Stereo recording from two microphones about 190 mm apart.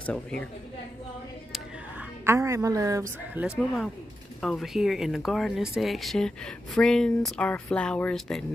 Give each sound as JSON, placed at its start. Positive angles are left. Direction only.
{"t": 0.0, "sound": "a woman's voice", "side_deg": 5}
{"t": 1.5, "sound": "a sound", "side_deg": -10}
{"t": 3.4, "sound": "speech", "side_deg": 0}